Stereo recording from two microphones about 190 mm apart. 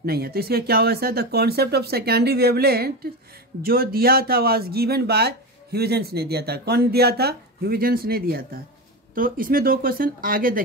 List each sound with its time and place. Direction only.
0.0 s speech: 55° right (ahead or behind)